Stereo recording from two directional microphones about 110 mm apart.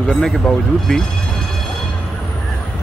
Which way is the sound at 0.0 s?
Centre (ahead or behind).